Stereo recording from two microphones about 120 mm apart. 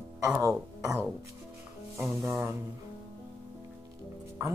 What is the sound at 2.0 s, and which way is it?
Speech, 25° right (ahead or behind).